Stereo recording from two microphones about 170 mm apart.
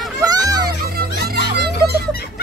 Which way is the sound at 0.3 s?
20° right (ahead or behind).